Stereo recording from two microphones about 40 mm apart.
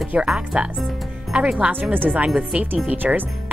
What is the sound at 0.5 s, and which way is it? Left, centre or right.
Speech, right.